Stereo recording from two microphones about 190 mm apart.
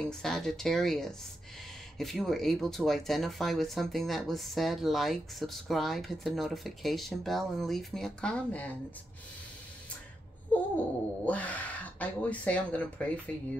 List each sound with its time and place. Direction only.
0.0 s speech: 5° left (ahead or behind)
10.5 s babbling: 10° left (ahead or behind)
11.2 s speech: 5° left (ahead or behind)